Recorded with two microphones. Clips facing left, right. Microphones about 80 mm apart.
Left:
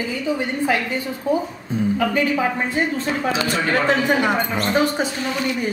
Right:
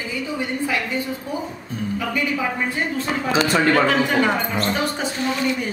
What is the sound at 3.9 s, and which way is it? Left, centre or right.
Speech, centre.